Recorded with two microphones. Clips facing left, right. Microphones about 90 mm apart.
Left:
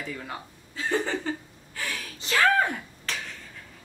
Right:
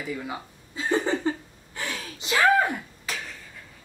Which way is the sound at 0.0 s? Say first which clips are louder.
Right 3 dB; 10° right (ahead or behind).